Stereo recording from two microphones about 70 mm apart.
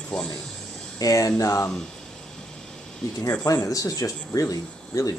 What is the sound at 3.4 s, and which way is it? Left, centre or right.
Speech, left.